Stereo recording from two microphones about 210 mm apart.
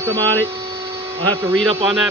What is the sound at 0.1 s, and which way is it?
Speech, 65° right (ahead or behind).